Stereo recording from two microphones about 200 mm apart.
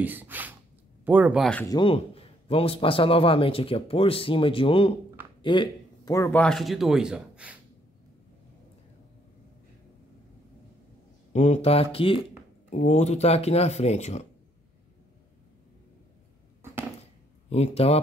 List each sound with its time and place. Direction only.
0.0 s speech: 10° right (ahead or behind)
1.7 s a man's voice: 25° left (ahead or behind); by 7.5 s 5° right (ahead or behind)
11.3 s a man's voice: 35° left (ahead or behind)
17.5 s speech: 30° left (ahead or behind)